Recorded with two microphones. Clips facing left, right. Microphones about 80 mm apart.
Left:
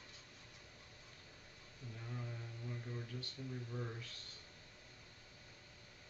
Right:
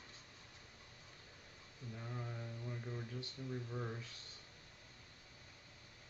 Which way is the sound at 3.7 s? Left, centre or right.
Centre.